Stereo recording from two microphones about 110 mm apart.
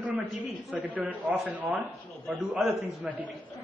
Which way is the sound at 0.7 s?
15° right (ahead or behind).